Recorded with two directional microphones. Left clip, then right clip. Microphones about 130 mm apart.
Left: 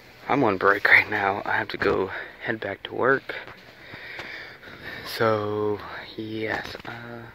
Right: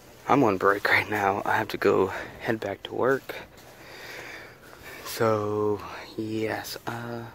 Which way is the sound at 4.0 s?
35° right (ahead or behind).